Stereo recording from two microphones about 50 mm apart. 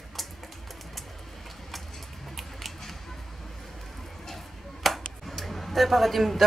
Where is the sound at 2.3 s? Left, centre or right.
Centre.